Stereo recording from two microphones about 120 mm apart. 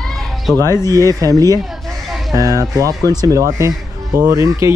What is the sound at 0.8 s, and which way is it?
Speech, 30° right (ahead or behind).